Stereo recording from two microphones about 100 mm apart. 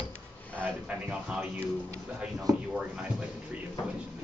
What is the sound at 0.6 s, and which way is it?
Speech, 15° right (ahead or behind).